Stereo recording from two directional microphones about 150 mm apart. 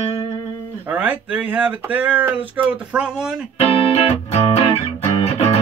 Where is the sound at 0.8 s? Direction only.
10° right (ahead or behind).